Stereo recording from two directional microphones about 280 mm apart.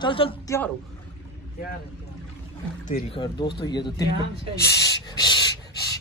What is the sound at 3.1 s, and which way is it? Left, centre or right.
Speech, centre.